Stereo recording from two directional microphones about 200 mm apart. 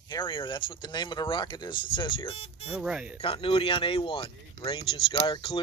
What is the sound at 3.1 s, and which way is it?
Speech, 30° left (ahead or behind).